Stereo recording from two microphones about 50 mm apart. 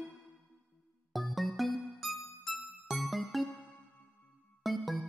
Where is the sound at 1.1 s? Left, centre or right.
Centre.